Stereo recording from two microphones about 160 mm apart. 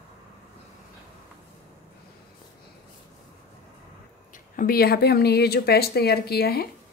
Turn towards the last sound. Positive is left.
turn(degrees=75)  # may be behind; listen again after turning